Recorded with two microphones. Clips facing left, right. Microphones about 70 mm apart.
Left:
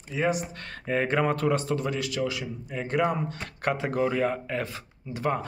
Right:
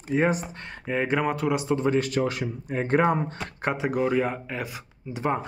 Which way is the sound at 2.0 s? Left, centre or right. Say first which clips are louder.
Right 4 dB; right.